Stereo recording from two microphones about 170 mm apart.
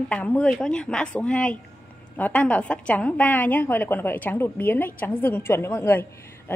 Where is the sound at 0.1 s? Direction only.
10° left (ahead or behind).